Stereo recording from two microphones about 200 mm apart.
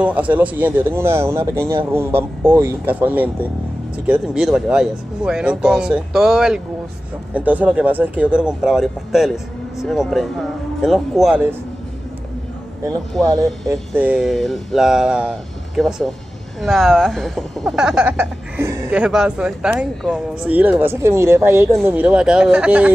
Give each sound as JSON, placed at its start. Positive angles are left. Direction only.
{"t": 0.0, "sound": "a man's voice", "side_deg": -5}
{"t": 13.2, "sound": "a man's voice", "side_deg": -15}